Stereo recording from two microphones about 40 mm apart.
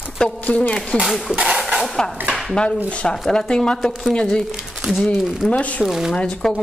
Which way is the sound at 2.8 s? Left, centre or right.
Left.